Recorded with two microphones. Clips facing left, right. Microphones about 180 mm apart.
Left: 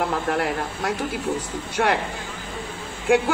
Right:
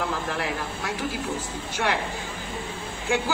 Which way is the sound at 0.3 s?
55° left (ahead or behind).